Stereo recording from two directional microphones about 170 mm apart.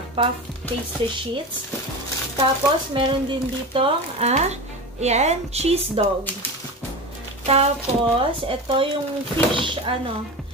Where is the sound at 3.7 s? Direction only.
35° right (ahead or behind).